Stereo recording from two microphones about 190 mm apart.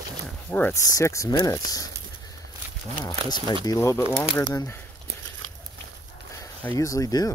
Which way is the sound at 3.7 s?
15° left (ahead or behind).